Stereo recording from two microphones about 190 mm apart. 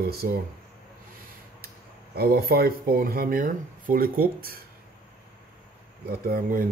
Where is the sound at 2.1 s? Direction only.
50° right (ahead or behind).